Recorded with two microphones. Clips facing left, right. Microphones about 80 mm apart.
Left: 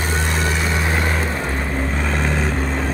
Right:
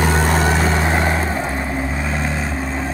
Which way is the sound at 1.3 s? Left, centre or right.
Centre.